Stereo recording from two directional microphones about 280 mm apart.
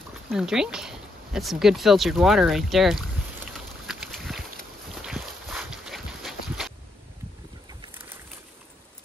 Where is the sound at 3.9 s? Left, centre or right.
Centre.